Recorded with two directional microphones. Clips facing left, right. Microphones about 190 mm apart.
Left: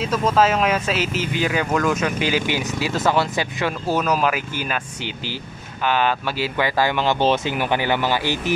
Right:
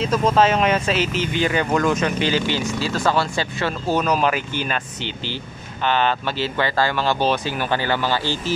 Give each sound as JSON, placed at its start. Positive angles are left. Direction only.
{"t": 0.0, "sound": "speech", "side_deg": 0}